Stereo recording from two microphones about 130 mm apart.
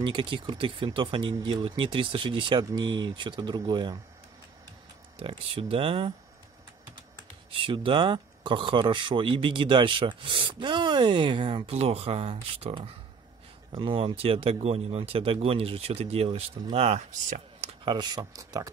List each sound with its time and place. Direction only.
0.0 s speech: 40° right (ahead or behind)
5.2 s speech: 45° right (ahead or behind)
7.6 s speech: 40° right (ahead or behind)
17.8 s speech: 35° right (ahead or behind)